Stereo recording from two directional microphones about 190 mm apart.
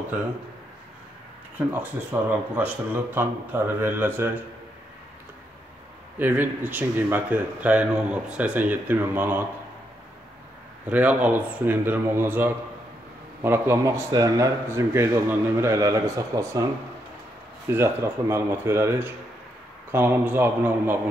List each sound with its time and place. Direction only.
1.7 s speech: 10° right (ahead or behind)
6.1 s speech: 10° right (ahead or behind)
10.9 s speech: 10° right (ahead or behind)
17.6 s speech: 10° right (ahead or behind)